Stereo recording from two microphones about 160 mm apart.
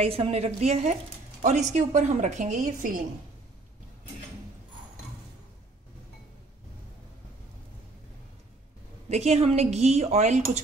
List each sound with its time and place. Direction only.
0.0 s a woman's voice: 40° right (ahead or behind); by 3.0 s 60° right (ahead or behind)
9.1 s a woman's voice: 45° right (ahead or behind)